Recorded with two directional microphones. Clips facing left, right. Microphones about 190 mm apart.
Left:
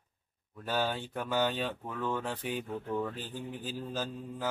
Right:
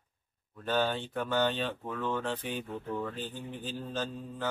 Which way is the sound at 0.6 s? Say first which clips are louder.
Right 2 dB; 10° left (ahead or behind).